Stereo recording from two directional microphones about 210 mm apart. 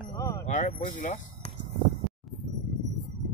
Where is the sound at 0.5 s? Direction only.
35° left (ahead or behind).